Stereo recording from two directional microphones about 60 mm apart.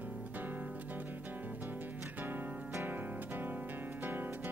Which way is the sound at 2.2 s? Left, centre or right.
Right.